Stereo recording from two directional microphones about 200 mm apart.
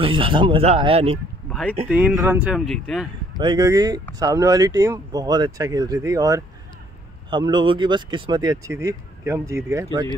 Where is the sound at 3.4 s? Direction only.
20° right (ahead or behind).